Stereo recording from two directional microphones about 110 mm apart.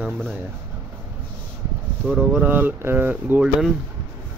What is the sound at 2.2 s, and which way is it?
Speech, 15° right (ahead or behind).